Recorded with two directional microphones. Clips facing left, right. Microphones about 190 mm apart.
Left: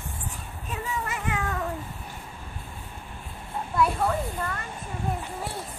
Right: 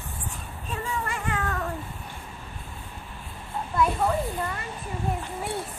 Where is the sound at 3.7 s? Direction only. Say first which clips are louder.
Even; centre (ahead or behind).